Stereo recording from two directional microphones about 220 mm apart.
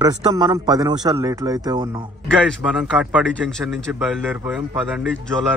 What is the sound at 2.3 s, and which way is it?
A man's voice, centre (ahead or behind).